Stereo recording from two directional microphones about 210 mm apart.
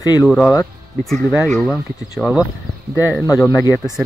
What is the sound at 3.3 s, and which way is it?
Speech, 15° left (ahead or behind).